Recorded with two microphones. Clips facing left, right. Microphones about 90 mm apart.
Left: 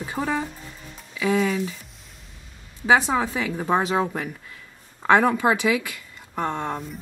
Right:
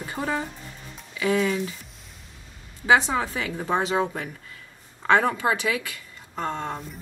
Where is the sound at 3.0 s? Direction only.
10° left (ahead or behind).